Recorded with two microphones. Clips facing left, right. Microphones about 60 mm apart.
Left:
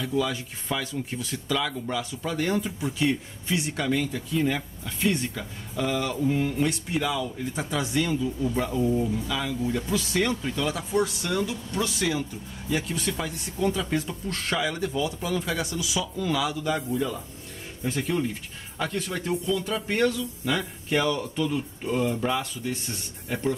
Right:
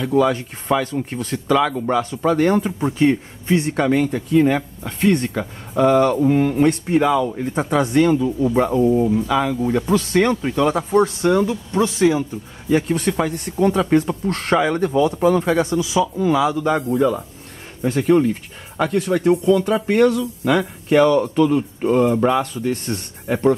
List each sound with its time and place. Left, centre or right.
0.0 s speech: right
9.1 s a man's voice: right
16.8 s speech: right